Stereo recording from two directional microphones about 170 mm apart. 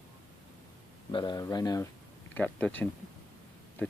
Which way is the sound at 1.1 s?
25° left (ahead or behind).